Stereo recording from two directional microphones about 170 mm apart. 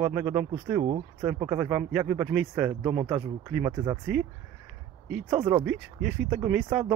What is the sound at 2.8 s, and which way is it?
Speech, 25° right (ahead or behind).